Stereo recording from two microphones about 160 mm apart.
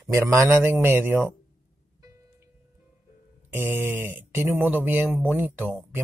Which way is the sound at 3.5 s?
15° right (ahead or behind).